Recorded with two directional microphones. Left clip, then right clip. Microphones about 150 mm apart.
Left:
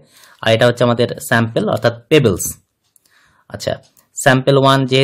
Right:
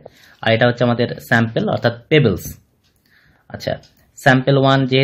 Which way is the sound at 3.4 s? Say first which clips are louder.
Left 2 dB; 50° left (ahead or behind).